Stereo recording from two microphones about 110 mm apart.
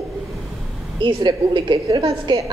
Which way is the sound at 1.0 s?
45° right (ahead or behind).